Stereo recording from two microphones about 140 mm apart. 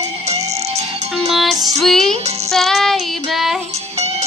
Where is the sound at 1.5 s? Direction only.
25° right (ahead or behind).